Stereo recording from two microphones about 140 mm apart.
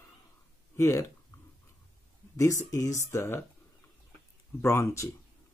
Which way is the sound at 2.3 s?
20° left (ahead or behind).